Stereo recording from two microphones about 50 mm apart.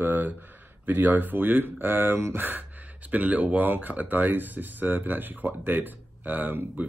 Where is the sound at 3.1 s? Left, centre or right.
Right.